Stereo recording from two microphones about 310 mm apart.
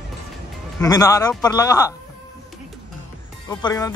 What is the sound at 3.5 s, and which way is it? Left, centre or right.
Speech, centre.